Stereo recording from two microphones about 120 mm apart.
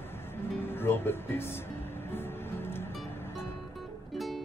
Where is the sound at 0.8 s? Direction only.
20° left (ahead or behind).